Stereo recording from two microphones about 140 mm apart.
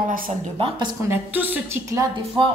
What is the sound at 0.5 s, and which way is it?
Speech, 35° right (ahead or behind).